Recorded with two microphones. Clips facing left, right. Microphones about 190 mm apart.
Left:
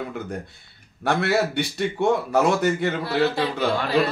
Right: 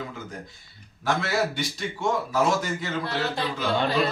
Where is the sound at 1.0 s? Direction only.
65° left (ahead or behind).